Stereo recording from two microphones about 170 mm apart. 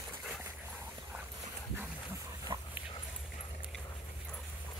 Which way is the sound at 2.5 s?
30° right (ahead or behind).